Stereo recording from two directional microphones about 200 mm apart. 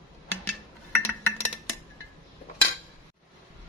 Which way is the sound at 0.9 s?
10° left (ahead or behind).